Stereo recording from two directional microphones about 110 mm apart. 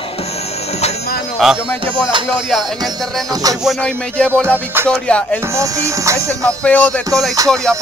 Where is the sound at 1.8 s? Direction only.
50° right (ahead or behind).